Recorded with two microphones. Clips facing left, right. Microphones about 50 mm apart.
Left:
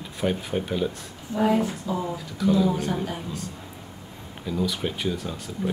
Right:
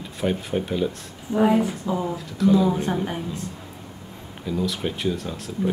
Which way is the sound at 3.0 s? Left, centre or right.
Right.